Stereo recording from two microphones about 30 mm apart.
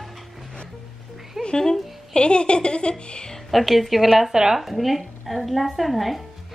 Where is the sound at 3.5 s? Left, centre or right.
Centre.